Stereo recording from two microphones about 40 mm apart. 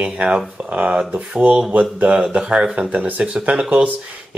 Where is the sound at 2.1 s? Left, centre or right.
Right.